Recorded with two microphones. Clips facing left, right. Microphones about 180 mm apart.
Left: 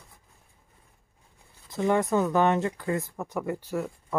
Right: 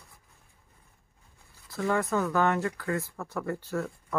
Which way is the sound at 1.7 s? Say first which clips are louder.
Left 4 dB; 20° left (ahead or behind).